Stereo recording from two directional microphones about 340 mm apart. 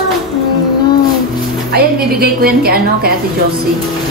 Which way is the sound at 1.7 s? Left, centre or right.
Right.